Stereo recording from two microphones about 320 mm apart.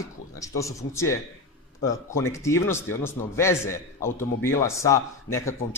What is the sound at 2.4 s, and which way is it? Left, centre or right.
A man's voice, centre.